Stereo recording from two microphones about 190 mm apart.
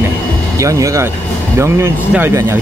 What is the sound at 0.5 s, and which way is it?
Speech, 15° right (ahead or behind).